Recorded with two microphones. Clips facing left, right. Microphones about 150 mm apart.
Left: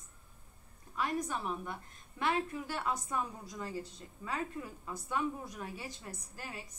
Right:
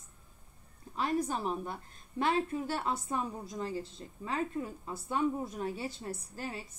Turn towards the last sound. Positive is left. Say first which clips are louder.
# right 5 dB
turn(degrees=-30)  # may be behind; listen again after turning